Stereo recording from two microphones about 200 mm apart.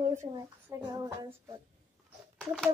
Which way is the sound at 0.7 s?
15° right (ahead or behind).